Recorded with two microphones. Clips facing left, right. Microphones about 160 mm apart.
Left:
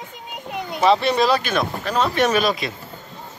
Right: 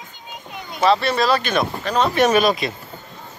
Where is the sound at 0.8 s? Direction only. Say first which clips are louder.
Left 1 dB; 15° left (ahead or behind).